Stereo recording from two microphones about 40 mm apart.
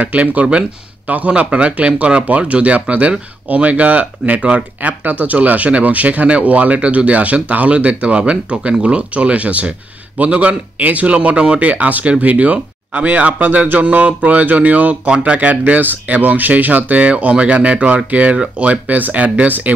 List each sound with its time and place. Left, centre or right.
0.0 s speech: right
4.7 s speech: right
11.6 s speech: right
15.8 s speech: right
17.0 s speech: right